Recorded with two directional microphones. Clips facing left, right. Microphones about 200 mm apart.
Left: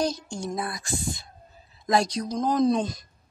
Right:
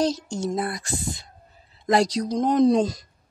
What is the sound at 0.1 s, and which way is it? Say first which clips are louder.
Speech: right 5 dB; 90° right.